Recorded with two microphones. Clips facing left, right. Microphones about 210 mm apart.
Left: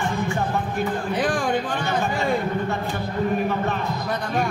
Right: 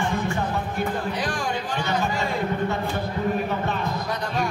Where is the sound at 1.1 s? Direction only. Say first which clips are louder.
Left 5 dB; 55° left (ahead or behind).